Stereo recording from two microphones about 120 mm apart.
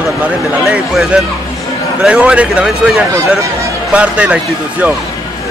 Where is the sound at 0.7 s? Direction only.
5° right (ahead or behind).